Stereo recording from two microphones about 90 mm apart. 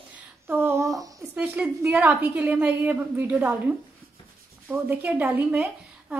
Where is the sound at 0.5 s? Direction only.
25° right (ahead or behind).